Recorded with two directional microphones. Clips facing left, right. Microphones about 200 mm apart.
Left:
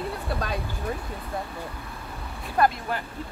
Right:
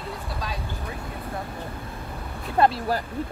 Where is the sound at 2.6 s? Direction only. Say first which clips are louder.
Right 2 dB; 35° right (ahead or behind).